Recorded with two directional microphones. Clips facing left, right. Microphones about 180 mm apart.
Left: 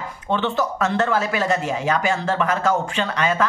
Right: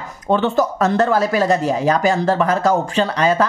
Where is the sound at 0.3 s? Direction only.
40° right (ahead or behind).